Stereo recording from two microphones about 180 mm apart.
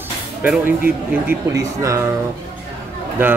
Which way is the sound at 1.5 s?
15° right (ahead or behind).